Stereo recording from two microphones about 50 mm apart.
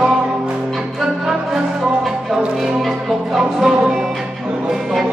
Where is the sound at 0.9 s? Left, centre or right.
Centre.